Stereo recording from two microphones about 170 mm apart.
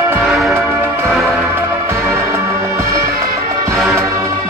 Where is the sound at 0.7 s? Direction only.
15° right (ahead or behind).